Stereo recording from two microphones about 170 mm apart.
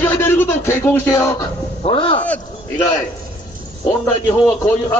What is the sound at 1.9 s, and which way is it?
Speech, 30° left (ahead or behind).